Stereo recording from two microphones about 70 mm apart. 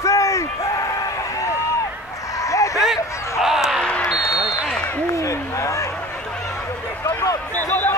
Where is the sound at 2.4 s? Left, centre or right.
Left.